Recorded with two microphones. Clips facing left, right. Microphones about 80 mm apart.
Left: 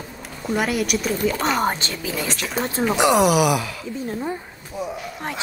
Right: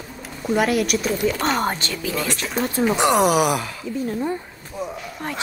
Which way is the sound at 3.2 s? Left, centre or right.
Right.